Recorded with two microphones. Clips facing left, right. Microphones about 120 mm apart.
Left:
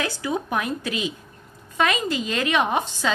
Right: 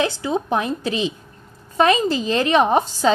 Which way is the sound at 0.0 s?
25° right (ahead or behind).